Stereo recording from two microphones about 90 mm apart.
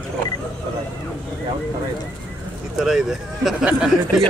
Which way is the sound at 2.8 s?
5° right (ahead or behind).